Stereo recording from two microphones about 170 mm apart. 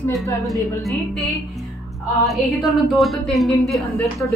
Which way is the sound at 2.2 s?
Centre (ahead or behind).